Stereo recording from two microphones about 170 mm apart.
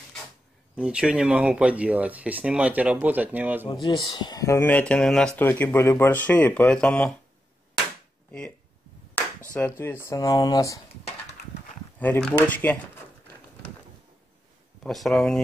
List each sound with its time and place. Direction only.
0.7 s speech: 5° right (ahead or behind)
3.8 s speech: 25° left (ahead or behind); by 7.2 s 5° left (ahead or behind)
8.3 s speech: 5° left (ahead or behind)
12.0 s speech: 10° left (ahead or behind)
14.8 s speech: centre (ahead or behind)